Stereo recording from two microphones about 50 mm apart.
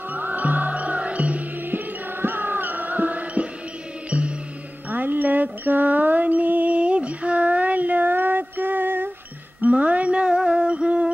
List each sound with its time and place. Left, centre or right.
0.1 s music: right
2.2 s music: right
4.8 s music: right
9.6 s music: right